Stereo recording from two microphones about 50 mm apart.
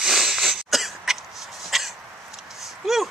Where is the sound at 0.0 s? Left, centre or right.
Centre.